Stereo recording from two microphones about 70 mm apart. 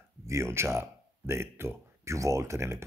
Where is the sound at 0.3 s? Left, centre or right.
Right.